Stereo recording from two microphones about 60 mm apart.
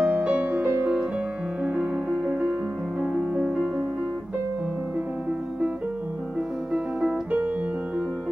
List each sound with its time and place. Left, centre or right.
0.0 s music: right
6.7 s music: right